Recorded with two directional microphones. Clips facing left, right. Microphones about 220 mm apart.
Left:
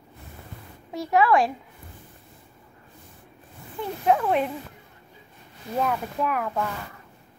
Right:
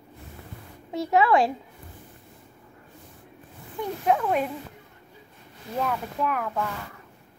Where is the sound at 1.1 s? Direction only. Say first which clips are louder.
Even; 25° right (ahead or behind).